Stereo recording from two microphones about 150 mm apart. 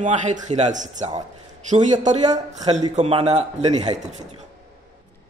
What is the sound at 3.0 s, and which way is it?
Speech, 45° right (ahead or behind).